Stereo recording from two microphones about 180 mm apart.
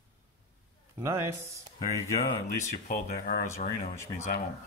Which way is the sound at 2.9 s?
50° left (ahead or behind).